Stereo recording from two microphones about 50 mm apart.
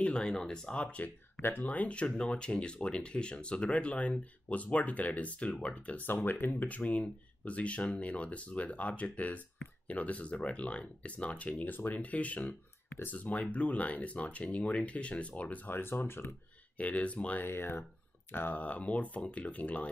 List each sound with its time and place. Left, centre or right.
0.0 s speech: left
1.6 s speech: left
6.0 s speech: left
15.7 s speech: left
16.7 s speech: left
17.4 s speech: left
18.6 s speech: left